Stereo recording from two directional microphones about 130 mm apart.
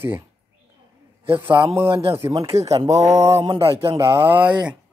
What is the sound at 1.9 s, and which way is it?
Speech, 45° right (ahead or behind).